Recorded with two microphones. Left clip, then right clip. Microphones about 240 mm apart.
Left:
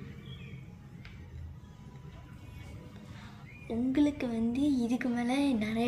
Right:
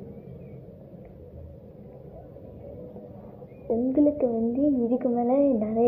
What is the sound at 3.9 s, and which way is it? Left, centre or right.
Speech, left.